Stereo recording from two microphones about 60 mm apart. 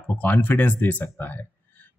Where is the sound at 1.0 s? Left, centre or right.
Left.